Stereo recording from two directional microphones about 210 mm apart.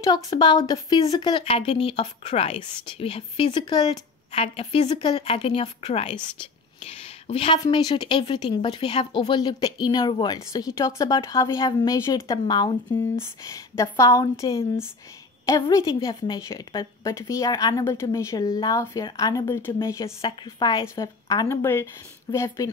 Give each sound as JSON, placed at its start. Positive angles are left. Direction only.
{"t": 0.0, "sound": "a woman's voice", "side_deg": 20}